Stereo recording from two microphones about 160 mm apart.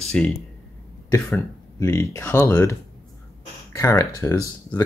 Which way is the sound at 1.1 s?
15° left (ahead or behind).